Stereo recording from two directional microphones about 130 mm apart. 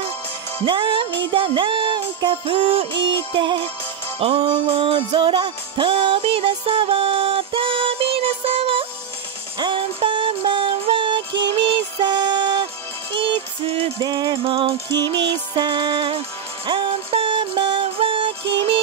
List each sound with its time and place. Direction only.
0.7 s music: 40° right (ahead or behind)
4.2 s music: 50° right (ahead or behind)
14.0 s music: 30° right (ahead or behind)
14.4 s music: 45° right (ahead or behind)